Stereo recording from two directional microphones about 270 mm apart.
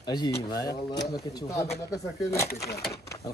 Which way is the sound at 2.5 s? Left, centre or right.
Left.